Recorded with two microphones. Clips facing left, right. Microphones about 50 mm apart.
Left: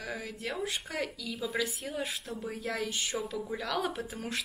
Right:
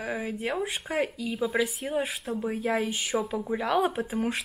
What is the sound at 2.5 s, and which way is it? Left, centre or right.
Speech, right.